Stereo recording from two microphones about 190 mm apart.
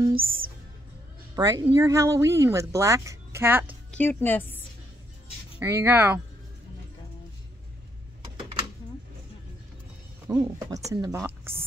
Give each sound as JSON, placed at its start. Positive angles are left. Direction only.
{"t": 0.1, "sound": "speech", "side_deg": -50}
{"t": 1.3, "sound": "speech", "side_deg": -20}
{"t": 3.9, "sound": "a woman's voice", "side_deg": 10}
{"t": 5.6, "sound": "speech", "side_deg": -15}
{"t": 10.2, "sound": "speech", "side_deg": -15}